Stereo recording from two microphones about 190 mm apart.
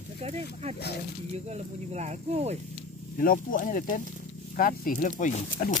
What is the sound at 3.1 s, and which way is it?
Speech, 50° left (ahead or behind).